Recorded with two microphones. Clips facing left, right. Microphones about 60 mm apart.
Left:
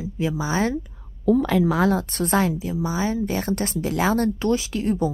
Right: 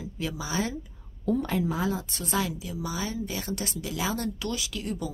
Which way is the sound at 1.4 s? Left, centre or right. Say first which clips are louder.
Left 8 dB; left.